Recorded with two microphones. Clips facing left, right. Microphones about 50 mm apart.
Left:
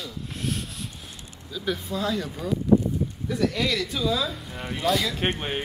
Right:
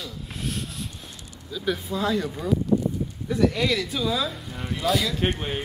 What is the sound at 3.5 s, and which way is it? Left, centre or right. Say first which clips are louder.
Speech: right 1 dB; centre.